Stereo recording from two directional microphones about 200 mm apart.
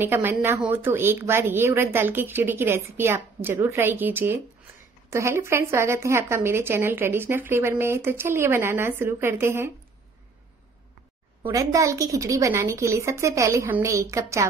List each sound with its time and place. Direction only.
0.0 s a woman's voice: 10° right (ahead or behind)
11.4 s a woman's voice: 15° right (ahead or behind)